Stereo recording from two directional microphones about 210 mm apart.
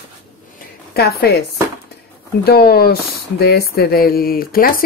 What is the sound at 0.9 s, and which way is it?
Speech, 50° left (ahead or behind).